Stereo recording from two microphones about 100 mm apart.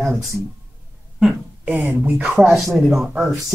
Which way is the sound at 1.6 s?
15° right (ahead or behind).